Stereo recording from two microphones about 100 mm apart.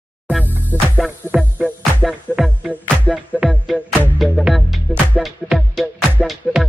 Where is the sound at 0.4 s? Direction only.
20° left (ahead or behind).